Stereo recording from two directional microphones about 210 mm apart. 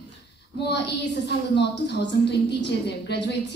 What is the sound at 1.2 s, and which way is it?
A woman's voice, 50° left (ahead or behind).